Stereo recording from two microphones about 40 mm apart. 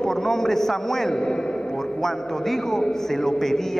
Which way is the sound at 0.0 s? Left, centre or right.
Centre.